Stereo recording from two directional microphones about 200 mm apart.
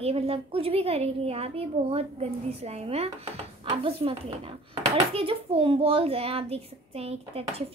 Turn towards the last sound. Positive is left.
turn(degrees=-30)  # may be behind; listen again after turning